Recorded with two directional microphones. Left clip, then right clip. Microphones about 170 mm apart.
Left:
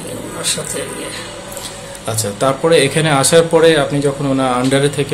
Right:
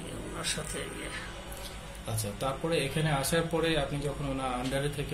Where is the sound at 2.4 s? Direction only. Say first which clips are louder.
Left 19 dB; 45° left (ahead or behind).